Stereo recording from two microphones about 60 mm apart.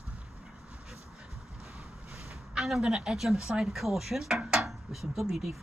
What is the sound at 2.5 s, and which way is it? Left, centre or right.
Speech, centre.